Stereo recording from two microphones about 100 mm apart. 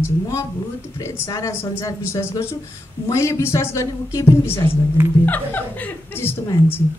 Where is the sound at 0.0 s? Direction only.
30° left (ahead or behind).